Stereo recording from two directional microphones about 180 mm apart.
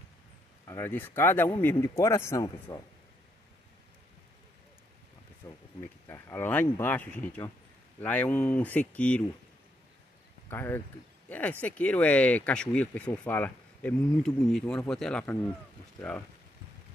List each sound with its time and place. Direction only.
0.7 s speech: 15° left (ahead or behind)
5.4 s a sound: 15° left (ahead or behind)
6.0 s speech: 15° left (ahead or behind)
10.5 s speech: 10° left (ahead or behind)